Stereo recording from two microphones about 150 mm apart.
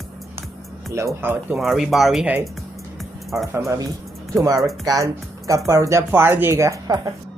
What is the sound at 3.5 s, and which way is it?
Speech, 20° right (ahead or behind).